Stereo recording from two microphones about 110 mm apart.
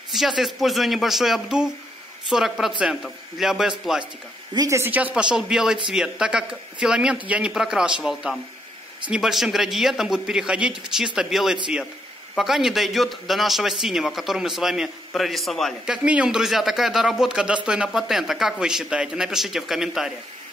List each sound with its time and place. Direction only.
0.1 s a man's voice: centre (ahead or behind)
4.6 s speech: 25° right (ahead or behind)
4.9 s a man's voice: 10° right (ahead or behind)